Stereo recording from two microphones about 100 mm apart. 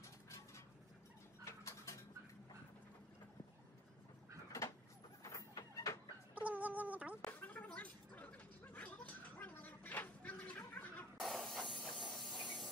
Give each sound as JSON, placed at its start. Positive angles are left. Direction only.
{"t": 1.4, "sound": "bird", "side_deg": 30}
{"t": 4.5, "sound": "a sound", "side_deg": 30}
{"t": 5.3, "sound": "chicken", "side_deg": 30}
{"t": 6.4, "sound": "a sound", "side_deg": -15}
{"t": 7.2, "sound": "gargling", "side_deg": 15}
{"t": 11.1, "sound": "spray", "side_deg": 0}
{"t": 12.1, "sound": "hiss", "side_deg": 0}